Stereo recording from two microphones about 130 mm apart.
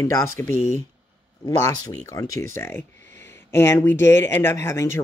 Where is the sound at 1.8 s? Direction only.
25° left (ahead or behind).